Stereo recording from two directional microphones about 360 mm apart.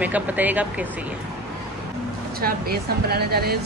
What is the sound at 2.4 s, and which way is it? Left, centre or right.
A woman's voice, right.